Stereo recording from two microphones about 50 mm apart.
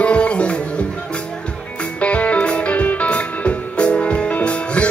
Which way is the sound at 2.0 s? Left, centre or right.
Left.